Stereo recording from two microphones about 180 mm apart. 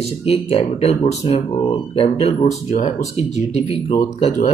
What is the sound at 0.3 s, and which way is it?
Speech, 35° left (ahead or behind).